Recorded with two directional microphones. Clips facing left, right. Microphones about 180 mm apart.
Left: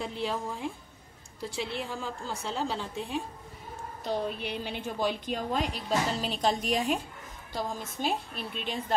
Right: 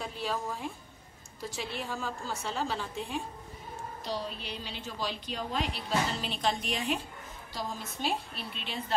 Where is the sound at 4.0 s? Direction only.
50° left (ahead or behind).